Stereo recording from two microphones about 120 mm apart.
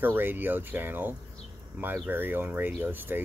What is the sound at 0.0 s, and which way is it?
Speech, 15° right (ahead or behind).